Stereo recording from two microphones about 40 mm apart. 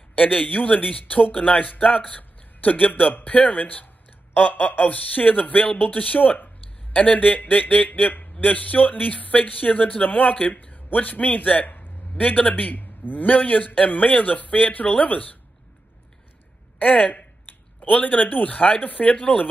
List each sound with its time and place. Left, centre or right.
0.1 s a man's voice: left
5.9 s a sound: left
7.0 s a man's voice: left
16.7 s speech: left